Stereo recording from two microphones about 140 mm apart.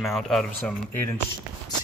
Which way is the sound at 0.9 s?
15° left (ahead or behind).